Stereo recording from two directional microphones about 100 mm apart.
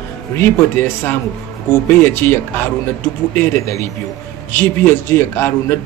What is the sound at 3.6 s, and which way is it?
A man's voice, 30° left (ahead or behind).